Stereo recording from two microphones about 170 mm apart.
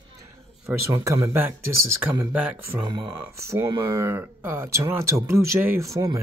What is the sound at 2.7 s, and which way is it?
Speech, 30° right (ahead or behind).